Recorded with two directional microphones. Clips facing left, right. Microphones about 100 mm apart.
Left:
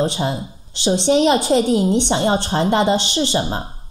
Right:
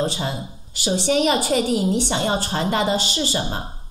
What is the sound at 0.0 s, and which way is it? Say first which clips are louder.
A woman's voice: left 4 dB; 20° left (ahead or behind).